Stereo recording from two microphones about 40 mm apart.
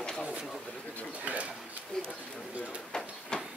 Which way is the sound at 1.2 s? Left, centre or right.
Right.